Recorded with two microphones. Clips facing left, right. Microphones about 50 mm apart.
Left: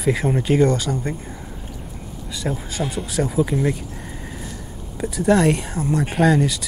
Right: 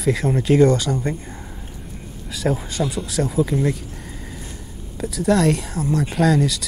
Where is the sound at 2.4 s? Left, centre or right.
Centre.